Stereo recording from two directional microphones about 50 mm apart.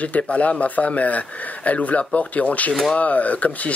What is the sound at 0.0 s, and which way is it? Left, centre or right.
Speech, left.